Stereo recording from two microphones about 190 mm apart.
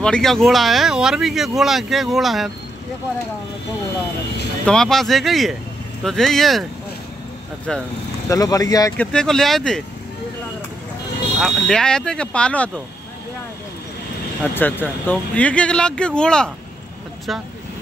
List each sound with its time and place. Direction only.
0.0 s speech: 5° left (ahead or behind)
4.6 s speech: 5° left (ahead or behind)
8.3 s speech: 20° left (ahead or behind)
8.9 s speech: 5° left (ahead or behind)
11.4 s speech: 5° left (ahead or behind)
14.4 s speech: 10° left (ahead or behind)